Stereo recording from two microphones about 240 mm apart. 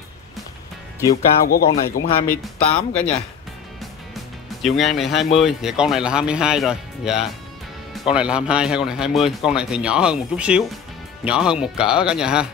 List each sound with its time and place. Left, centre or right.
1.4 s speech: left
2.0 s speech: centre
4.1 s music: centre
5.4 s speech: centre